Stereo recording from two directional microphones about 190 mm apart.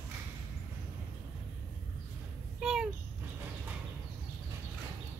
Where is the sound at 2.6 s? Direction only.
5° right (ahead or behind).